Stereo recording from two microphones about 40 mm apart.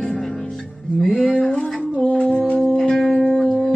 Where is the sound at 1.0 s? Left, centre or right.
Centre.